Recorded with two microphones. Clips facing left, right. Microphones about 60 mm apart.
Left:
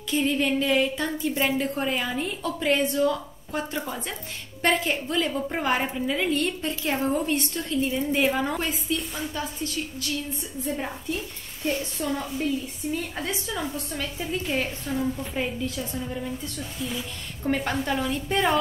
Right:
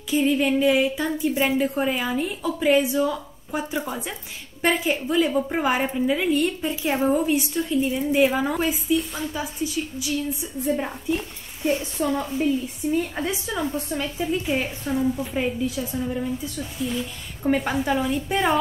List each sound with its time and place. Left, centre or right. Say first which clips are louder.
0.1 s a woman's voice: right 3 dB; centre